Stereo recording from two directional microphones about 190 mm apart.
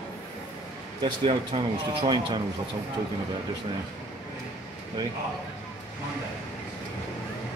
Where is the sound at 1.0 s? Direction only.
25° right (ahead or behind).